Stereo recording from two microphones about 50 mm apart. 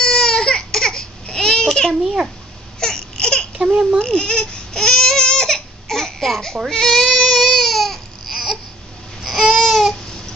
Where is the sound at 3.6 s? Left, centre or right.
Centre.